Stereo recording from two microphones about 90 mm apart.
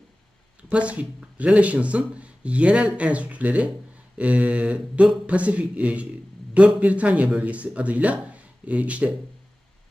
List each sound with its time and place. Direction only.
0.7 s speech: 15° right (ahead or behind)